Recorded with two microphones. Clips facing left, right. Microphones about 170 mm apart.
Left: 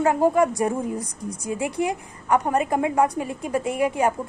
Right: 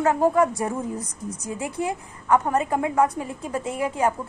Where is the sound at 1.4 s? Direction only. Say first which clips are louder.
Left 3 dB; 15° left (ahead or behind).